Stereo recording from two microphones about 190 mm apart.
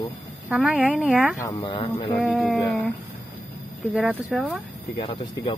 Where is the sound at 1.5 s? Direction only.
30° left (ahead or behind).